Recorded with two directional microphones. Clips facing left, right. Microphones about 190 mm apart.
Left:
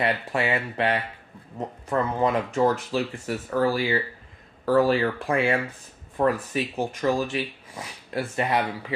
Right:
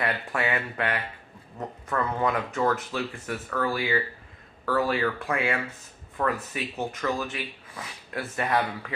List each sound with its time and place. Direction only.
0.0 s speech: 20° left (ahead or behind)